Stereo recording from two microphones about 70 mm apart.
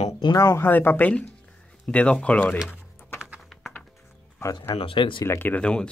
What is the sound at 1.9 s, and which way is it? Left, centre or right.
Speech, centre.